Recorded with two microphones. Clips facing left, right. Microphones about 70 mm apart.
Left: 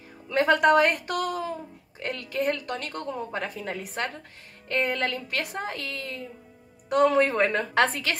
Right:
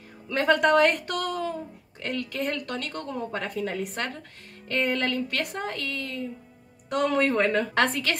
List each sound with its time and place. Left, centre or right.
0.3 s a woman's voice: centre